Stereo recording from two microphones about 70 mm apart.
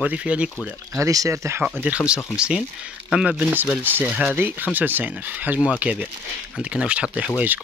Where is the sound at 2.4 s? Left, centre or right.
Centre.